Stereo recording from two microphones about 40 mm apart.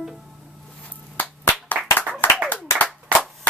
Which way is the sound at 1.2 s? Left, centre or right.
Left.